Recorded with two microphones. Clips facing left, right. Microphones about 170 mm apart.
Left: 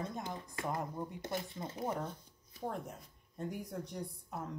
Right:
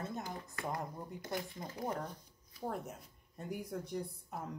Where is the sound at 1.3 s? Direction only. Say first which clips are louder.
Right 2 dB; 25° left (ahead or behind).